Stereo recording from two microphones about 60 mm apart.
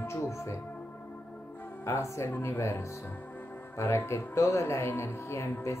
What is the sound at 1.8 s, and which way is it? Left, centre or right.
Speech, left.